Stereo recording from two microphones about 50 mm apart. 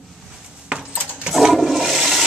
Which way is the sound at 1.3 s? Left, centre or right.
Centre.